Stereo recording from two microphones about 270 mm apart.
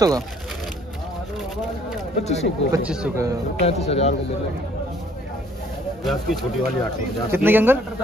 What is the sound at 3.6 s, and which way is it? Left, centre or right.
Speech, left.